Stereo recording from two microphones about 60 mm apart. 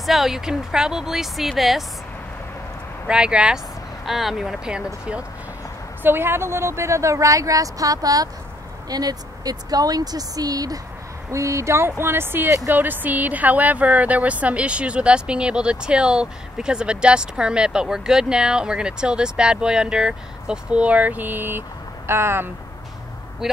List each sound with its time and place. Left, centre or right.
0.0 s speech: centre
3.1 s speech: centre
4.0 s speech: centre
6.0 s a woman's voice: right
11.3 s speech: right
23.4 s speech: centre